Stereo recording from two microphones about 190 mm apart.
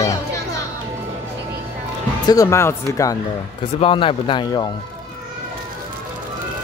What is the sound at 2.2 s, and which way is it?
Speech, 15° left (ahead or behind).